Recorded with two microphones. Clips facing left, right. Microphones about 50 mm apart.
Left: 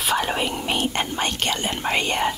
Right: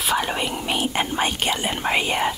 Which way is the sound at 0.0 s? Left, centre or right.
Centre.